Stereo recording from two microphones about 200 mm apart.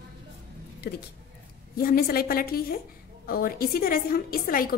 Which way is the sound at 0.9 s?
55° left (ahead or behind).